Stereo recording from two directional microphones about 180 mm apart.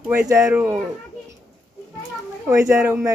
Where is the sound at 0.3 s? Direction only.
15° right (ahead or behind).